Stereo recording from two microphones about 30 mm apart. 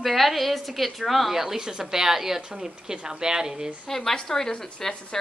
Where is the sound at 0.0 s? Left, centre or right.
Centre.